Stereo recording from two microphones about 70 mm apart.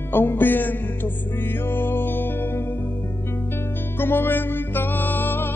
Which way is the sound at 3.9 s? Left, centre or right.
Left.